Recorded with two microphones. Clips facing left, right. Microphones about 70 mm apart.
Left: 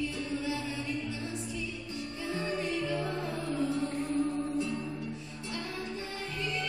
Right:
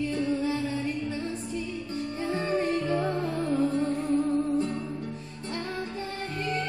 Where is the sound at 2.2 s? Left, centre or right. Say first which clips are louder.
Right 6 dB; right.